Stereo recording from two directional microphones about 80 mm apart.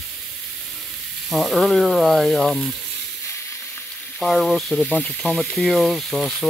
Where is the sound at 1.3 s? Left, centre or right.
Centre.